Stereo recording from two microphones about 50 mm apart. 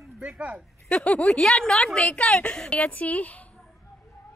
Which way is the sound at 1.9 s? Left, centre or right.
Left.